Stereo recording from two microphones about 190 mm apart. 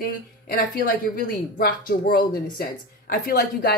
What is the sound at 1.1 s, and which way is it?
A woman's voice, 50° left (ahead or behind).